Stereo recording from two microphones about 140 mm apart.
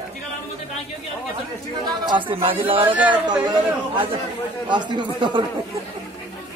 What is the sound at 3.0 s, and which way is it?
Speech, 10° right (ahead or behind).